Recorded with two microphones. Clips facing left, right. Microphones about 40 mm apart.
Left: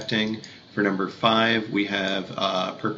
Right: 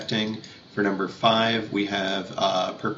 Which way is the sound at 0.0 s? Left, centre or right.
Centre.